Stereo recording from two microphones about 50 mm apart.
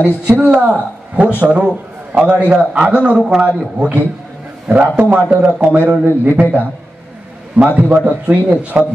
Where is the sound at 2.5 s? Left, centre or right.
Centre.